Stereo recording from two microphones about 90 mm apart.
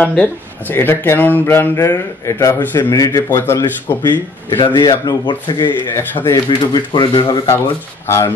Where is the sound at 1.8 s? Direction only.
35° left (ahead or behind).